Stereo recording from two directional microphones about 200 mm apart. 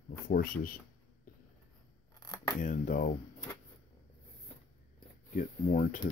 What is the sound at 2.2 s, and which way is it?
Scissors, 20° left (ahead or behind).